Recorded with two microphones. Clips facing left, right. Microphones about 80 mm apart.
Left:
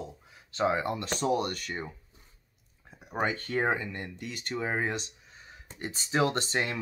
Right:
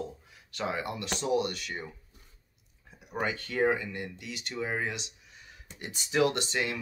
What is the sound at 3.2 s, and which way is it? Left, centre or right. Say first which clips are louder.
Speech: even; left.